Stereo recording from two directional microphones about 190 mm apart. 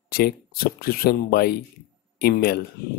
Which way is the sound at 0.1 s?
55° left (ahead or behind).